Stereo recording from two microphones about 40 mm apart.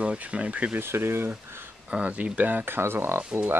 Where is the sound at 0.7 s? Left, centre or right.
Right.